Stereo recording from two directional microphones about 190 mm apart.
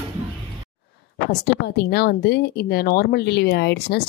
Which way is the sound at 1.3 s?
60° left (ahead or behind).